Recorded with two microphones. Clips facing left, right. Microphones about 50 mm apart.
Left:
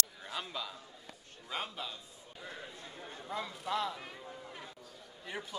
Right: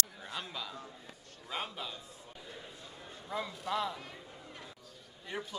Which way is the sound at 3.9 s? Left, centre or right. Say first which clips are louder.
Even; centre.